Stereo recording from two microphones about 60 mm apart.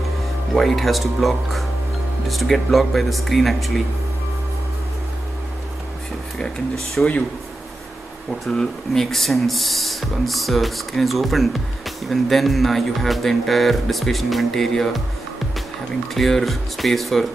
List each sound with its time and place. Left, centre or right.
0.6 s speech: centre
7.0 s speech: centre
8.5 s speech: centre
16.2 s speech: centre